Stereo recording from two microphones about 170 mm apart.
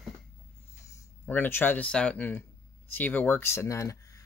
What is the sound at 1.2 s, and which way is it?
Speech, 10° left (ahead or behind).